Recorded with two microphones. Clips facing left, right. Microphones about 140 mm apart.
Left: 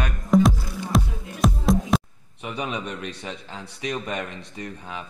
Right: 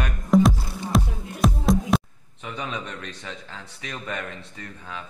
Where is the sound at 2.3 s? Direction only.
15° left (ahead or behind).